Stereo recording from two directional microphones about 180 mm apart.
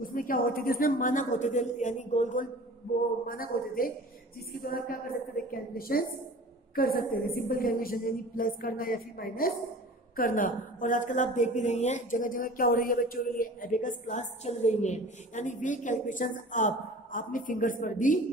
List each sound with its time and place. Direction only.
0.0 s a woman's voice: 50° left (ahead or behind)
3.3 s a woman's voice: 55° left (ahead or behind)